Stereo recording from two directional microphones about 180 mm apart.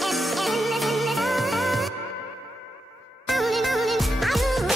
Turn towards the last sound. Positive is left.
turn(degrees=0)  # may be behind; listen again after turning